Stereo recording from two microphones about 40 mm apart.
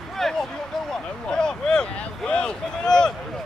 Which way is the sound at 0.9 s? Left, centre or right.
Centre.